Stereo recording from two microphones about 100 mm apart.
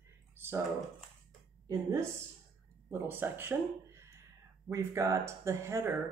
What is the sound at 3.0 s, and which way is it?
Speech, 20° right (ahead or behind).